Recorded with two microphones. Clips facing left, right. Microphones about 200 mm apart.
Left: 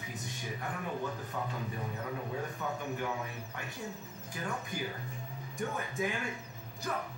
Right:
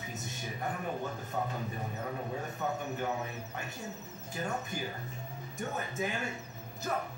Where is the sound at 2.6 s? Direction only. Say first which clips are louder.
Right 5 dB; 45° right (ahead or behind).